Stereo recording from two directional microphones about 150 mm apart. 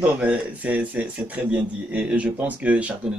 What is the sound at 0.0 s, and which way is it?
Speech, 10° right (ahead or behind).